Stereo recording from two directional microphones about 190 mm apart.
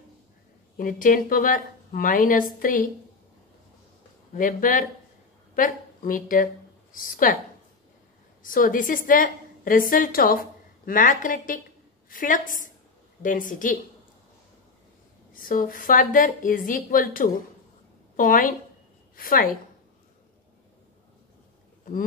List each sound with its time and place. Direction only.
0.7 s a woman's voice: 45° left (ahead or behind)
4.4 s a woman's voice: 45° left (ahead or behind)
8.4 s a woman's voice: 45° left (ahead or behind)
15.3 s a woman's voice: 45° left (ahead or behind)